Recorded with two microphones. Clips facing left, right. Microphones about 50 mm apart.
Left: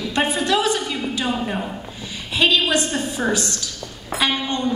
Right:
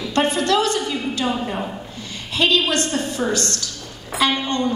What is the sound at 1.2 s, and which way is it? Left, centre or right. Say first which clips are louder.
Speech: even; centre.